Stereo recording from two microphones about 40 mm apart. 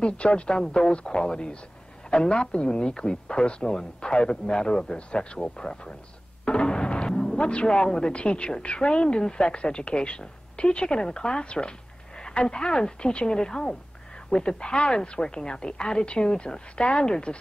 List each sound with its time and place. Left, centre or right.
0.0 s a woman's voice: left